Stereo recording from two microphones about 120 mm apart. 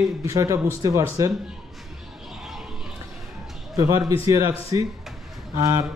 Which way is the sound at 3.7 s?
25° right (ahead or behind).